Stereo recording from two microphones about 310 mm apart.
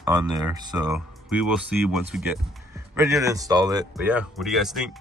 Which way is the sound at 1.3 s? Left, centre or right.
Left.